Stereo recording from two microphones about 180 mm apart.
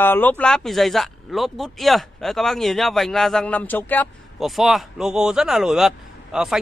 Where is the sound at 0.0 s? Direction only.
10° left (ahead or behind).